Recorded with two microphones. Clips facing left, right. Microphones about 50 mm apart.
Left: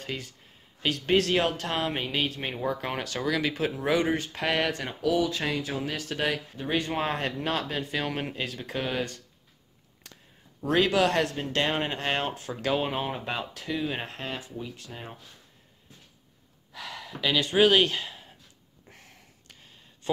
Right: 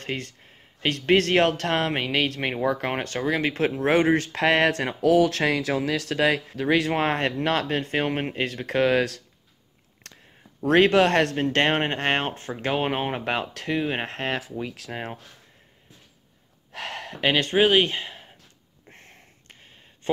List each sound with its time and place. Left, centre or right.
0.0 s speech: right
2.5 s speech: right
6.9 s speech: right
8.0 s speech: right
10.0 s a sound: right
10.6 s speech: right
12.8 s speech: right
14.6 s speech: right
16.7 s a sound: right
17.2 s speech: right
17.6 s speech: right
18.9 s a sound: right